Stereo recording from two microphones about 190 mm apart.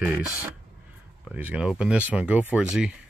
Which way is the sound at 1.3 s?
5° right (ahead or behind).